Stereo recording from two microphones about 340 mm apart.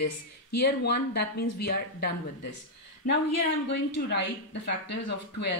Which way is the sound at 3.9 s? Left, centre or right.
Left.